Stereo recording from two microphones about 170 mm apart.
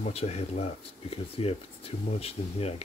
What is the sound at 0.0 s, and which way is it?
Speech, 40° left (ahead or behind).